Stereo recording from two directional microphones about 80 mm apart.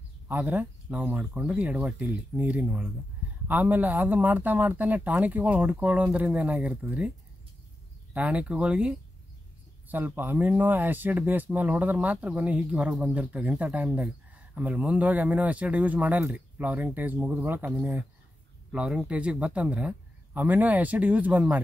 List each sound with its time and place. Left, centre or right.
0.3 s speech: right
8.1 s speech: centre
9.8 s speech: right
18.7 s speech: centre